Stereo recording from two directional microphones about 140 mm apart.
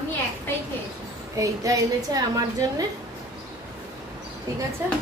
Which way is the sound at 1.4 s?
25° right (ahead or behind).